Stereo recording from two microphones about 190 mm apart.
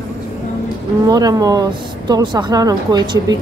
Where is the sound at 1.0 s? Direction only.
20° right (ahead or behind).